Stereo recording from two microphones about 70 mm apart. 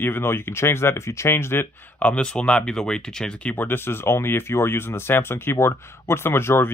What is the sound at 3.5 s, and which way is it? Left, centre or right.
Speech, left.